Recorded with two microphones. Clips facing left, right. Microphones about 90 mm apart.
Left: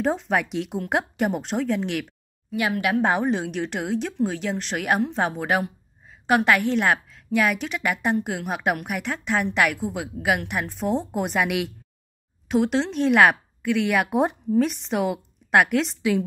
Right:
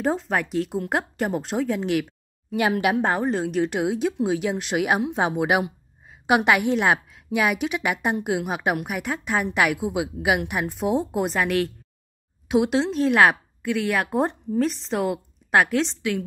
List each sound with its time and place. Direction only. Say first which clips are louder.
0.0 s a woman's voice: left 1 dB; centre (ahead or behind)
2.5 s speech: right 2 dB; 25° right (ahead or behind)
3.0 s a woman's voice: left 1 dB; centre (ahead or behind)
16.0 s a woman's voice: left 4 dB; 15° left (ahead or behind)